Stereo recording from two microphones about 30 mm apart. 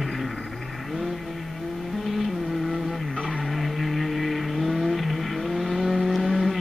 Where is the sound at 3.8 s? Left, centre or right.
Centre.